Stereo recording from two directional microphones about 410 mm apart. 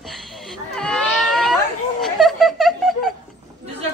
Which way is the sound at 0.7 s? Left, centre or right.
Centre.